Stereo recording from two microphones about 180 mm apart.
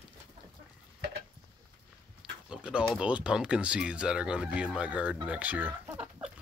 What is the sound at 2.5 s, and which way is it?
Speech, 5° right (ahead or behind).